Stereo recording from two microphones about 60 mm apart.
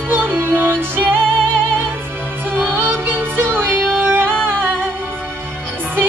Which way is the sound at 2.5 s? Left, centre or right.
Right.